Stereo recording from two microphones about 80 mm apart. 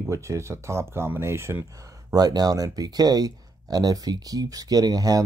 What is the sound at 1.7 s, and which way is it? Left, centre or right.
Speech, right.